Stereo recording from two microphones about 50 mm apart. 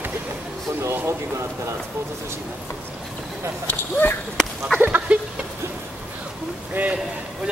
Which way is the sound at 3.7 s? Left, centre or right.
Left.